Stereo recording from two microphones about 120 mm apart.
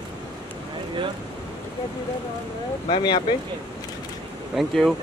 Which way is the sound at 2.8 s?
45° left (ahead or behind).